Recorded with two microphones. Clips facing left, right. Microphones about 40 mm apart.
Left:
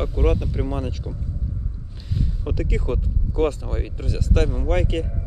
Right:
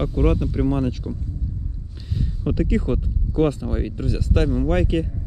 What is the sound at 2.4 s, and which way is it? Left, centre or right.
A man's voice, centre.